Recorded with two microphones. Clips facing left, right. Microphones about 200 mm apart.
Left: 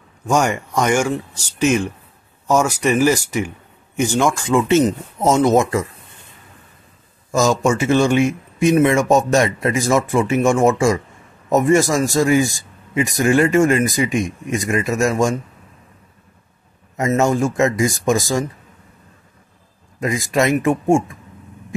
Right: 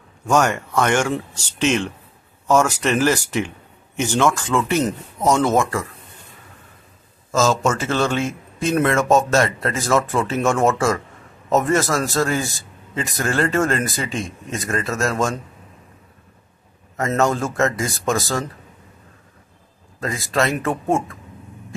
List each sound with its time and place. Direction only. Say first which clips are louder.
0.3 s speech: even; 10° left (ahead or behind)
7.2 s speech: left 2 dB; 15° left (ahead or behind)
16.9 s speech: left 3 dB; 15° left (ahead or behind)
20.0 s speech: left 3 dB; 15° left (ahead or behind)